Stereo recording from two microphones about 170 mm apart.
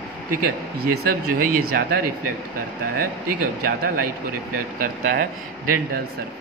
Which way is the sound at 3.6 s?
60° right (ahead or behind).